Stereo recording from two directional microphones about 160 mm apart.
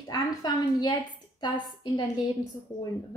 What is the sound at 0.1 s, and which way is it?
Speech, 25° left (ahead or behind).